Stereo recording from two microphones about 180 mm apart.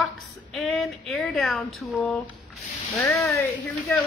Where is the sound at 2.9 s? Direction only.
15° left (ahead or behind).